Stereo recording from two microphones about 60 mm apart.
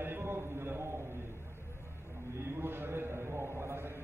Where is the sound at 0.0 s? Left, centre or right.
Right.